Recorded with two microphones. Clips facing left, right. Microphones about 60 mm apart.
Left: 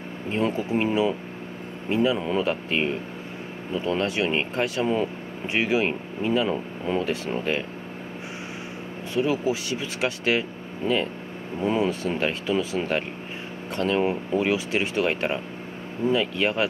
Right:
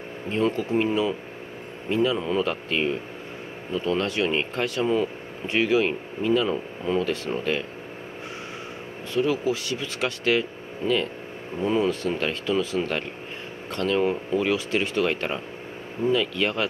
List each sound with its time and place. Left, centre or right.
0.3 s speech: centre
9.1 s speech: centre
11.6 s speech: centre